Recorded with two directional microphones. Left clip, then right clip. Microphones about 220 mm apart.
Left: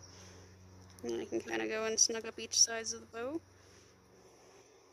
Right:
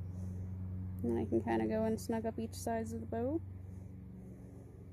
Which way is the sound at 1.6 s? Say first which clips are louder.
Left 3 dB; 15° left (ahead or behind).